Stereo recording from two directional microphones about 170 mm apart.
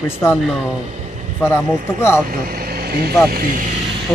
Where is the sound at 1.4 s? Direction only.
15° left (ahead or behind).